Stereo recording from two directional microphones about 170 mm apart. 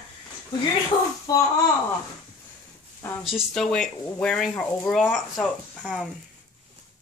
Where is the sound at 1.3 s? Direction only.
20° left (ahead or behind).